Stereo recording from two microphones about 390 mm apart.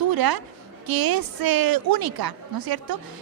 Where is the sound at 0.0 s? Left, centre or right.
Right.